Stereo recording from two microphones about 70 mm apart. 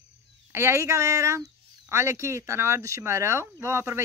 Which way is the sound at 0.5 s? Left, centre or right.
Right.